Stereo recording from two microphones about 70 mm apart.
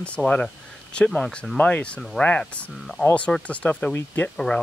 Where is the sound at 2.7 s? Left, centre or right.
Centre.